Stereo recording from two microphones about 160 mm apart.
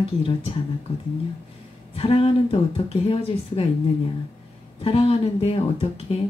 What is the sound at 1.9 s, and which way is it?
Speech, 35° left (ahead or behind).